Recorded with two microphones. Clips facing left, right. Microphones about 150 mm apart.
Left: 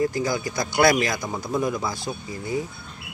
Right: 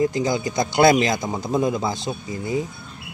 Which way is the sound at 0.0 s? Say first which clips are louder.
Right 3 dB; 20° right (ahead or behind).